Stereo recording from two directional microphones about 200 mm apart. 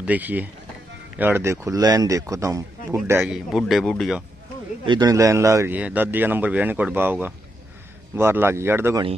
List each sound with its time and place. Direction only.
0.0 s speech: 10° right (ahead or behind)
3.2 s speech: 5° right (ahead or behind)
4.8 s speech: 20° right (ahead or behind)